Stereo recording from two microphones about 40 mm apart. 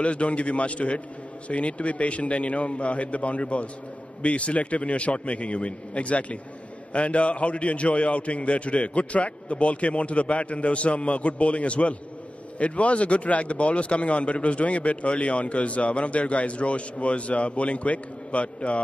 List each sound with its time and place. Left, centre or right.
0.0 s speech: left